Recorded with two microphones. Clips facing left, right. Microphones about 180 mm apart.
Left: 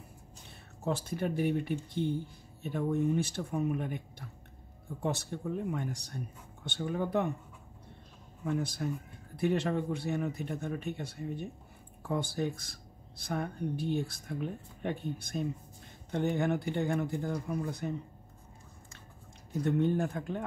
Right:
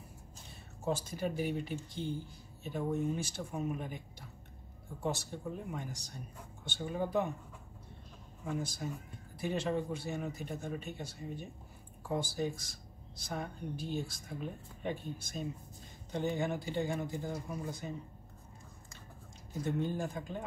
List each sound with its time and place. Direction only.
0.8 s speech: 60° left (ahead or behind)
5.0 s speech: 60° left (ahead or behind)
8.5 s speech: 60° left (ahead or behind)
19.6 s speech: 60° left (ahead or behind)